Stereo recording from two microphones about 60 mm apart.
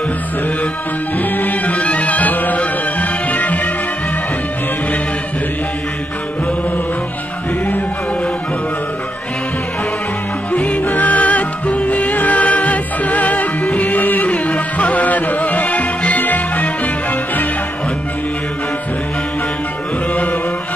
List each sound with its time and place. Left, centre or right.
1.1 s music: left
10.5 s music: left